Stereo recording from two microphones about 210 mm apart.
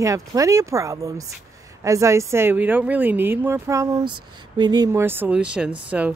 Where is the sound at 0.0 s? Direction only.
15° right (ahead or behind).